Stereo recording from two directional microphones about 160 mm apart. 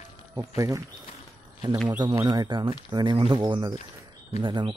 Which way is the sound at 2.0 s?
20° right (ahead or behind).